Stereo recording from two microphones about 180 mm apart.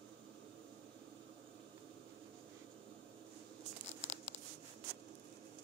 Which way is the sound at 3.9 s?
40° left (ahead or behind).